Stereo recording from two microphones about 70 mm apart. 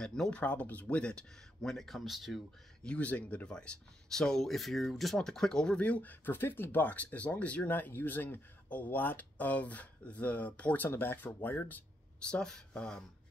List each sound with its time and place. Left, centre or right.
0.0 s speech: centre
0.4 s speech: left; by 2.4 s centre
2.8 s speech: centre
5.8 s speech: left
12.2 s speech: centre